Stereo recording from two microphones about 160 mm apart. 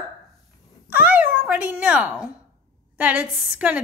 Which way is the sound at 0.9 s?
10° right (ahead or behind).